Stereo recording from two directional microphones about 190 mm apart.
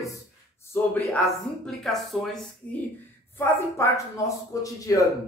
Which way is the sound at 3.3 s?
15° left (ahead or behind).